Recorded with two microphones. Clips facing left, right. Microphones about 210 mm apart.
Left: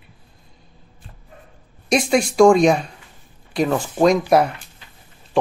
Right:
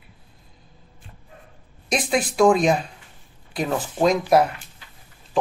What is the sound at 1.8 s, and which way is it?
Speech, centre (ahead or behind).